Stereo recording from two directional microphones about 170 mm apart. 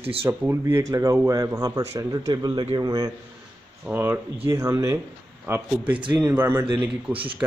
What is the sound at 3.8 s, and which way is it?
A man's voice, 10° right (ahead or behind).